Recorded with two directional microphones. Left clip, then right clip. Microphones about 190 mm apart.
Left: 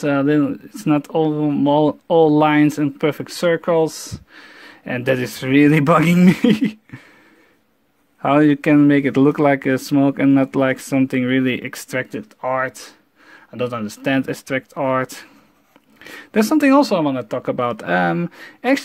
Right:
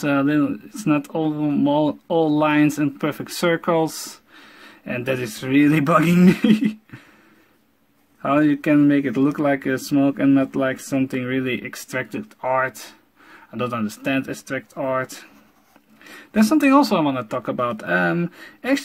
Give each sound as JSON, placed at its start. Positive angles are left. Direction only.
{"t": 0.0, "sound": "speech", "side_deg": 25}
{"t": 8.2, "sound": "speech", "side_deg": 35}